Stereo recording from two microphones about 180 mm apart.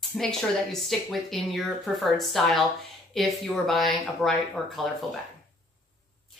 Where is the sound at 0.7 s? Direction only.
Centre (ahead or behind).